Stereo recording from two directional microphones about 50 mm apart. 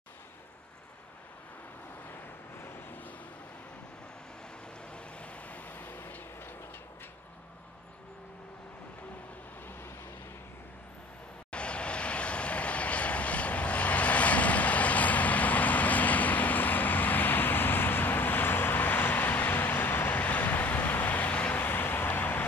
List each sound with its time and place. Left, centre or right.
2.6 s vehicle: left
4.8 s vehicle: left
9.7 s vehicle: left
11.5 s vehicle: left